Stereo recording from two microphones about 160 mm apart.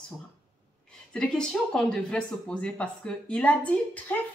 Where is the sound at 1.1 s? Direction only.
5° left (ahead or behind).